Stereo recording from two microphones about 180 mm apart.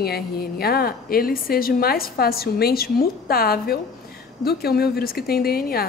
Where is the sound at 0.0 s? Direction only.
60° left (ahead or behind).